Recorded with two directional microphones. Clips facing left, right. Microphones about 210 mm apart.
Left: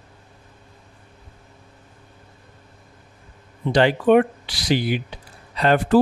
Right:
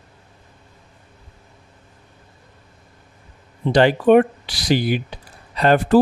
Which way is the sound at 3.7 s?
40° right (ahead or behind).